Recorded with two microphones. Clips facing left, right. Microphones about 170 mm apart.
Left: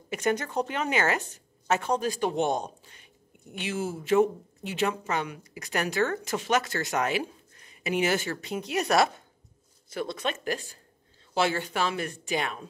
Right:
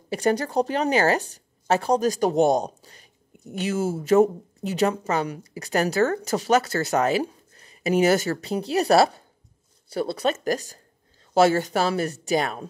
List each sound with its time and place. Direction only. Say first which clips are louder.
0.1 s a woman's voice: right 5 dB; 35° right (ahead or behind)